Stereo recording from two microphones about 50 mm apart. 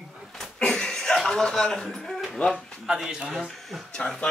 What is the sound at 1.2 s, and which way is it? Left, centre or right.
A man's voice, centre.